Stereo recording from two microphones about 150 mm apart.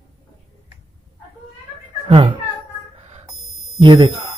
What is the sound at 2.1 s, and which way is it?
Speech, 35° right (ahead or behind).